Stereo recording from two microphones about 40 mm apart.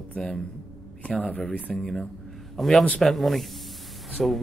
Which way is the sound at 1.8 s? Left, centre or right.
Centre.